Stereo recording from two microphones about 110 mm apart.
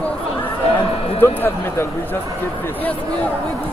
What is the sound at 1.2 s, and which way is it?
Speech, 20° left (ahead or behind).